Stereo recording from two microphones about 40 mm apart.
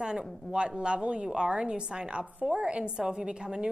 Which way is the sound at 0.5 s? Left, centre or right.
Right.